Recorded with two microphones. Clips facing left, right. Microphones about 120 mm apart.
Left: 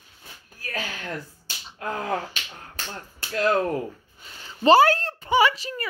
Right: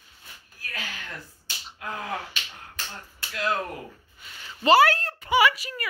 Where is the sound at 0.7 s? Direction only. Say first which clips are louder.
Left 6 dB; 40° left (ahead or behind).